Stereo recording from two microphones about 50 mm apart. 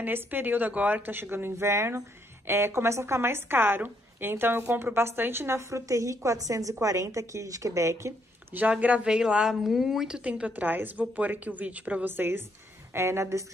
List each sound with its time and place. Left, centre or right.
0.0 s a woman's voice: right
1.6 s a woman's voice: right
8.5 s speech: right
9.0 s a woman's voice: centre
10.2 s speech: right
10.5 s a woman's voice: right
12.1 s speech: right
12.9 s speech: right